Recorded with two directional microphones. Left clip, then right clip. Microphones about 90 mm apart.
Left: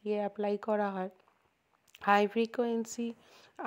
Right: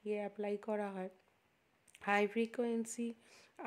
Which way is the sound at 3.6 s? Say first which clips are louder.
Left 8 dB; 40° left (ahead or behind).